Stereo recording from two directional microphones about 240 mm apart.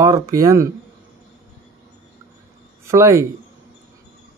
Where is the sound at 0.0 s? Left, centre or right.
Centre.